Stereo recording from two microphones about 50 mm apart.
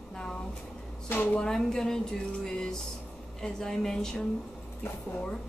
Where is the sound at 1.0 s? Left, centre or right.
Left.